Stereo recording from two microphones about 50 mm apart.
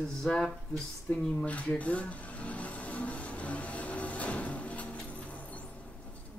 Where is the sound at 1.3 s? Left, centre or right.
Left.